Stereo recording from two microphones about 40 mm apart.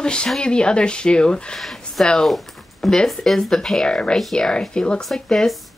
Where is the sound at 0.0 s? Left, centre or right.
Left.